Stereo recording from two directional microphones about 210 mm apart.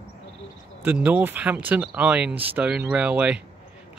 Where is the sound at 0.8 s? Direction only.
10° right (ahead or behind).